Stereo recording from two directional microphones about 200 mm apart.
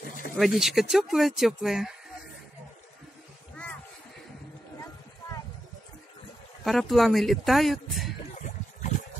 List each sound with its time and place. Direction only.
0.4 s speech: centre (ahead or behind)
6.6 s speech: centre (ahead or behind)
8.4 s a sound: 40° left (ahead or behind)